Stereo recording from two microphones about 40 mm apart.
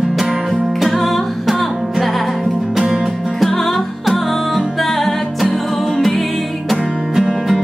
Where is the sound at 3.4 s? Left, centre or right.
Centre.